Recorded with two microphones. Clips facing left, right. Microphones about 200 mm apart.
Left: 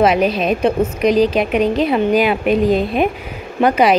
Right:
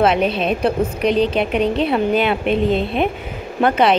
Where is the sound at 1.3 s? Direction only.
10° left (ahead or behind).